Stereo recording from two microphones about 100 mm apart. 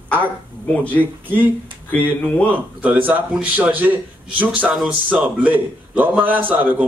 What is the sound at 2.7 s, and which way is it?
A man's voice, 15° right (ahead or behind).